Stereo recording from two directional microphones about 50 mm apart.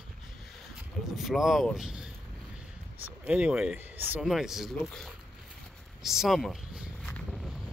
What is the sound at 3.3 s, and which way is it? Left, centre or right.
Speech, right.